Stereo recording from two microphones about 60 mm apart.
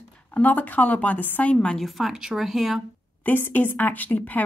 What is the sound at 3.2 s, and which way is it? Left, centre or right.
A woman's voice, left.